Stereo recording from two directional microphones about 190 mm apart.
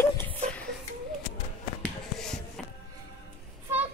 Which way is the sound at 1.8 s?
5° left (ahead or behind).